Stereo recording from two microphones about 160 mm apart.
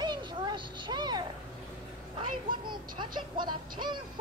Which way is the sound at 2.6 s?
30° right (ahead or behind).